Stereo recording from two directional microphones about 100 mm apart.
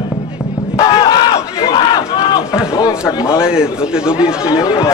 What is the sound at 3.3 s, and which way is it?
A man's voice, 10° right (ahead or behind).